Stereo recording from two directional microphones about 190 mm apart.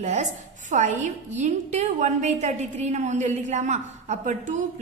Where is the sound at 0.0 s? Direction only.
40° right (ahead or behind).